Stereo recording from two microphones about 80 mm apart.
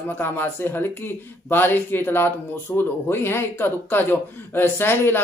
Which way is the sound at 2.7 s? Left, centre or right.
Centre.